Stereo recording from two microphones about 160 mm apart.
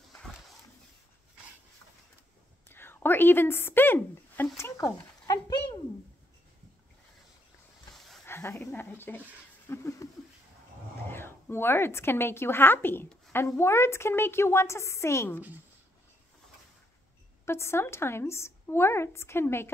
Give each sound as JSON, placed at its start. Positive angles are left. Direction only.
{"t": 2.7, "sound": "a sound", "side_deg": 15}
{"t": 8.3, "sound": "a woman's voice", "side_deg": 15}
{"t": 11.1, "sound": "a woman's voice", "side_deg": 15}
{"t": 17.5, "sound": "a woman's voice", "side_deg": 15}